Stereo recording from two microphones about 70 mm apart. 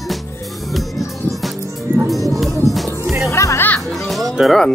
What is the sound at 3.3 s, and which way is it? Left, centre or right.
Music, left.